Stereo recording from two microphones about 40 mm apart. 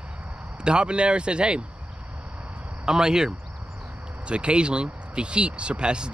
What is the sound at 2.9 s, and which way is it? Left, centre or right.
Speech, centre.